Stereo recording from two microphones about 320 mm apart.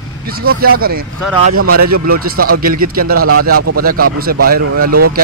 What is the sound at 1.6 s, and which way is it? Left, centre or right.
Speech, right.